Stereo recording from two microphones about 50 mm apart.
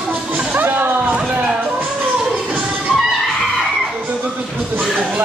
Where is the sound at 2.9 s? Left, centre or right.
Centre.